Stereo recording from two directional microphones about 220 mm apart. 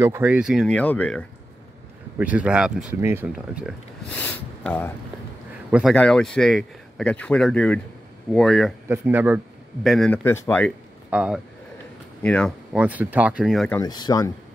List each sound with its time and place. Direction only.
0.0 s speech: 10° right (ahead or behind); by 1.2 s 5° left (ahead or behind)
2.1 s speech: 5° right (ahead or behind)
5.7 s speech: 5° right (ahead or behind)
8.8 s speech: 10° right (ahead or behind)
9.8 s speech: 5° left (ahead or behind)
11.1 s speech: 5° right (ahead or behind)
12.7 s speech: 5° right (ahead or behind)
13.7 s speech: 20° left (ahead or behind)